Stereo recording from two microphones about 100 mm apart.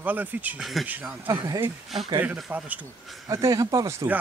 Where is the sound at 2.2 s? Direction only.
15° right (ahead or behind).